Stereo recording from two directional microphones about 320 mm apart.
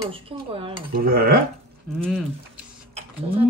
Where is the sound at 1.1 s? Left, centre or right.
Right.